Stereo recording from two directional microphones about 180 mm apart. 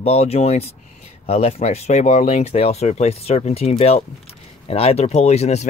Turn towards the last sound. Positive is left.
turn(degrees=35)  # may be behind; listen again after turning